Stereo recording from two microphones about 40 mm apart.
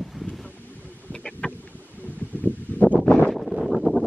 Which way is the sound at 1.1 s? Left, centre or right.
Left.